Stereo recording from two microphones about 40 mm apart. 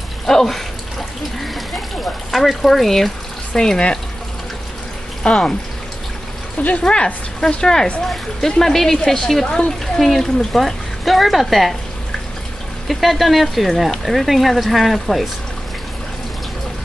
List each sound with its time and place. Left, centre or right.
0.3 s speech: centre
3.5 s speech: centre
5.2 s speech: left
6.8 s speech: left
9.9 s speech: centre
12.8 s speech: centre